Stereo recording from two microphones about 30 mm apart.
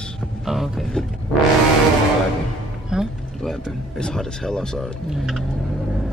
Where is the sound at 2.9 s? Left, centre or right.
Right.